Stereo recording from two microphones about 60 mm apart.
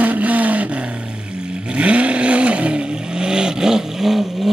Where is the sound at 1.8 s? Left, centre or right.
Right.